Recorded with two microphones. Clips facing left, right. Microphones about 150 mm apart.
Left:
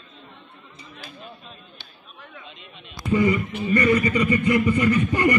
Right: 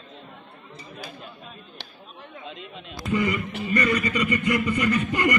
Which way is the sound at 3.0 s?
25° left (ahead or behind).